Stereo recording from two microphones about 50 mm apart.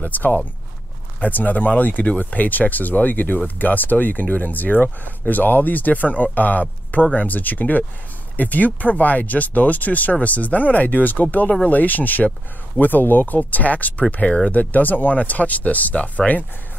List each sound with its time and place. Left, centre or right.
0.0 s speech: left
14.5 s speech: left